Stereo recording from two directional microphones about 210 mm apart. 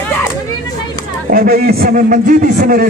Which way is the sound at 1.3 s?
45° right (ahead or behind).